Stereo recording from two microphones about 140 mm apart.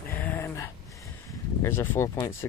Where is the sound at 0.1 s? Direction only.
15° left (ahead or behind).